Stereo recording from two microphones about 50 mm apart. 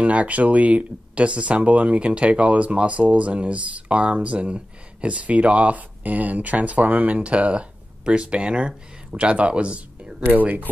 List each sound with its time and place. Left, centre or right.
0.0 s speech: right
10.2 s speech: right